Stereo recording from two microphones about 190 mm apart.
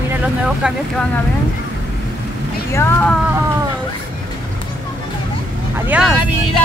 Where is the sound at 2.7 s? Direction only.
10° left (ahead or behind).